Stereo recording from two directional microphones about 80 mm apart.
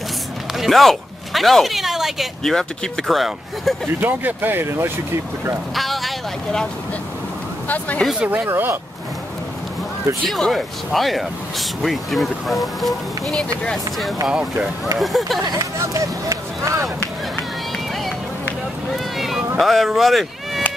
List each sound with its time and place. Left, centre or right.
0.5 s speech: centre
4.0 s speech: right
5.8 s vehicle: centre
7.6 s speech: centre
8.2 s speech: right
10.2 s speech: centre
14.2 s speech: centre
15.6 s speech: right
19.1 s speech: centre